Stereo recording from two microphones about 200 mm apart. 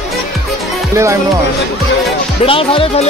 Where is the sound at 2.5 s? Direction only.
25° left (ahead or behind).